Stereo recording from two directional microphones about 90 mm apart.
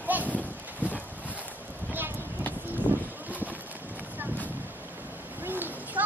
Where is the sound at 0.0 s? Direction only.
20° right (ahead or behind).